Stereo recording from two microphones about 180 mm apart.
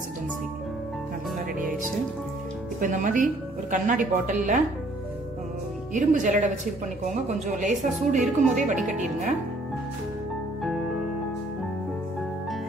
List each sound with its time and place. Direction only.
2.8 s speech: 45° right (ahead or behind)
5.9 s speech: 45° right (ahead or behind)
10.6 s music: centre (ahead or behind)